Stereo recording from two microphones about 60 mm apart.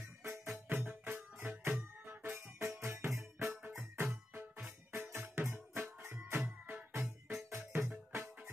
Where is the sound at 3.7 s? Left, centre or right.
Right.